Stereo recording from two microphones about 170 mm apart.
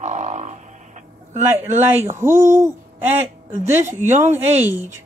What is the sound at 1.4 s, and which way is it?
Speech, 15° right (ahead or behind).